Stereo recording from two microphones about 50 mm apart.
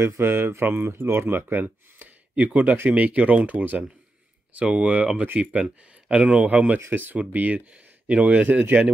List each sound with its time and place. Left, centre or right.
0.0 s speech: right
1.6 s speech: right
6.9 s speech: right
7.7 s a sound: right
8.3 s speech: right